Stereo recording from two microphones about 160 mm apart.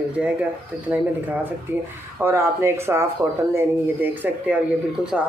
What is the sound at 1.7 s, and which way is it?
Speech, 15° right (ahead or behind).